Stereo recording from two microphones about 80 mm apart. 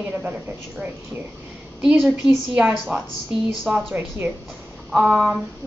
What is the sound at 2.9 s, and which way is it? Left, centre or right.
Speech, right.